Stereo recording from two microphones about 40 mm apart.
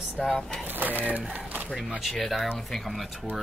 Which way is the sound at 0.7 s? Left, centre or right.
Right.